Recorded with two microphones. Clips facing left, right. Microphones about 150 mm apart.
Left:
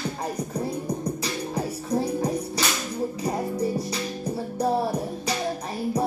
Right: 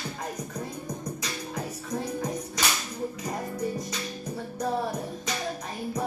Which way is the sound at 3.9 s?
35° left (ahead or behind).